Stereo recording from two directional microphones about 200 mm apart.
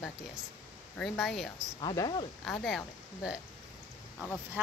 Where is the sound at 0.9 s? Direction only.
Centre (ahead or behind).